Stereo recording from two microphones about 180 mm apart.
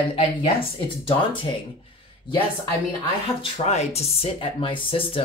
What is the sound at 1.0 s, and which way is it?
Speech, 30° left (ahead or behind).